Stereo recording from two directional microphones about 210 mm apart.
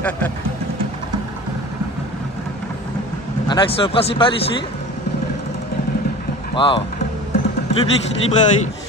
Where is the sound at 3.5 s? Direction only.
25° left (ahead or behind).